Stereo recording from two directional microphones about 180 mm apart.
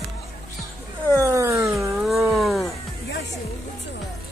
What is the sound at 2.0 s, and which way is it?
Cat, centre (ahead or behind).